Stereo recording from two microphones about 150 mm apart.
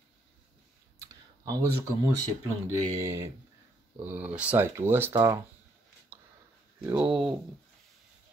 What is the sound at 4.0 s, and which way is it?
Speech, 10° right (ahead or behind).